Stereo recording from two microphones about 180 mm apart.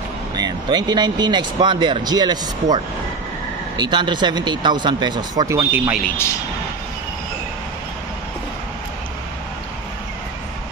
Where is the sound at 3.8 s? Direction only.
25° right (ahead or behind).